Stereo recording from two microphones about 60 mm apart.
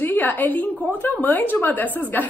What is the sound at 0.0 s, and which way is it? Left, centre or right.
A woman's voice, left.